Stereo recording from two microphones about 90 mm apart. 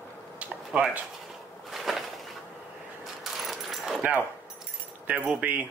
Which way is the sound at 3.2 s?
Centre (ahead or behind).